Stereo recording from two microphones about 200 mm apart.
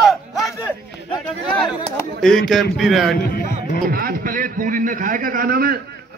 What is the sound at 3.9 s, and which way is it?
A man's voice, 45° right (ahead or behind).